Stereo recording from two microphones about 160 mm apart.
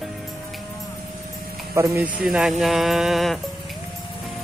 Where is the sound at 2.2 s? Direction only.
Centre (ahead or behind).